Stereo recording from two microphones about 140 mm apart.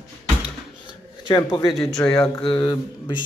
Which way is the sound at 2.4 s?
35° left (ahead or behind).